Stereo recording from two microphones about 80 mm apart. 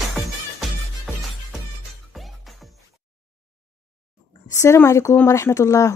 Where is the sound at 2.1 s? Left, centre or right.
Centre.